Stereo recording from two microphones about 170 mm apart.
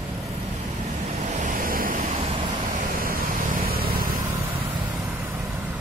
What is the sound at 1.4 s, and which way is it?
Vehicle, 55° right (ahead or behind).